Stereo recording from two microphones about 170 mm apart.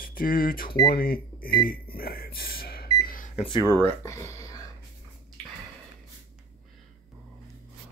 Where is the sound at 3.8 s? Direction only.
15° left (ahead or behind).